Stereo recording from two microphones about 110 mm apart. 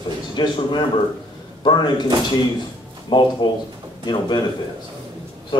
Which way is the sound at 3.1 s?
50° left (ahead or behind).